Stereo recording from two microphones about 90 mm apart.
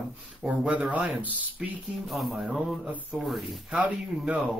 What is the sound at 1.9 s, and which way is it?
Speech, centre (ahead or behind).